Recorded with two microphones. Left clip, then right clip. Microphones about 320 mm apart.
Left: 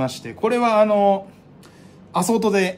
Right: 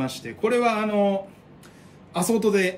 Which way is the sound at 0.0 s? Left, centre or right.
Centre.